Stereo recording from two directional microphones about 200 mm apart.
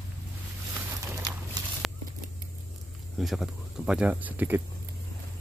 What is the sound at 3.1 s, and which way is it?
Speech, centre (ahead or behind).